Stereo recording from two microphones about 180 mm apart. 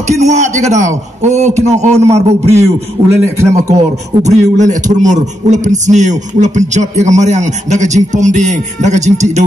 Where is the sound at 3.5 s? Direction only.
40° right (ahead or behind).